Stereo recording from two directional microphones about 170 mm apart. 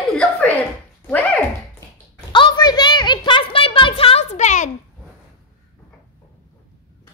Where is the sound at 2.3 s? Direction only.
25° left (ahead or behind); by 4.6 s 45° left (ahead or behind).